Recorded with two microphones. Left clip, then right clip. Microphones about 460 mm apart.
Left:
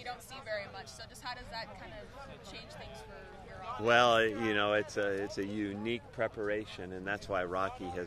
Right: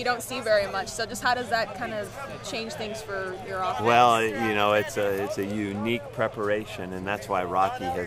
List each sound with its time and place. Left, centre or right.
0.0 s speech: right
3.8 s speech: left